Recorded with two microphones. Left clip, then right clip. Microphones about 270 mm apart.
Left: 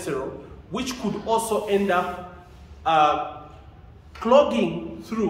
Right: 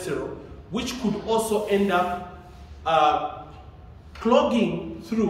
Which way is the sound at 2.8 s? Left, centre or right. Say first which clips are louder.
Left 1 dB; centre.